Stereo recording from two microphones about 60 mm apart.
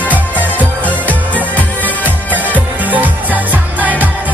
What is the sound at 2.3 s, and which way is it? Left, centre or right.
Music, right.